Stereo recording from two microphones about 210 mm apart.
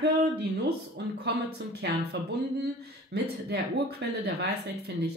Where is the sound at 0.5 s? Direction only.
55° right (ahead or behind).